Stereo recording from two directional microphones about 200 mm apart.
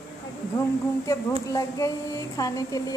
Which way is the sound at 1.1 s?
15° left (ahead or behind).